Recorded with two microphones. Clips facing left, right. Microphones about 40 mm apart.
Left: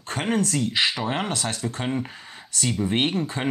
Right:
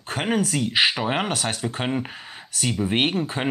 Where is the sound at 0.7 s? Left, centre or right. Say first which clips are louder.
Right 3 dB; right.